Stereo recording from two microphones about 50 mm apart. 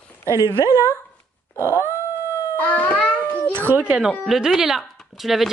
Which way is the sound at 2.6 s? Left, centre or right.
Left.